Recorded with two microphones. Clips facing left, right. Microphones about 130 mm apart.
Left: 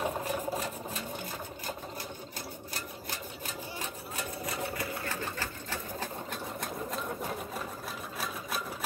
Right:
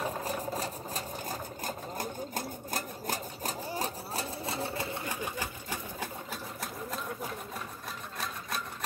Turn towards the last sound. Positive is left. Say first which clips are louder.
# left 2 dB
turn(degrees=0)  # may be behind; listen again after turning